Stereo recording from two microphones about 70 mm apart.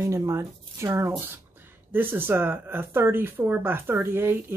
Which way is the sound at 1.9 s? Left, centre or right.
Right.